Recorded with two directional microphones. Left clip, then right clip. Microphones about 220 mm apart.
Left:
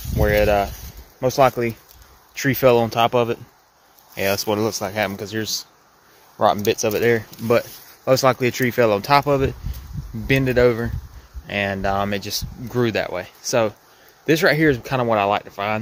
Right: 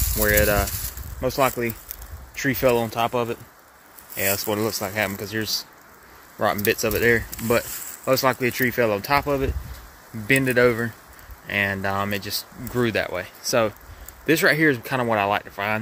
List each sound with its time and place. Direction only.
0.2 s speech: centre (ahead or behind)
1.2 s speech: 15° left (ahead or behind)
10.2 s speech: 5° left (ahead or behind)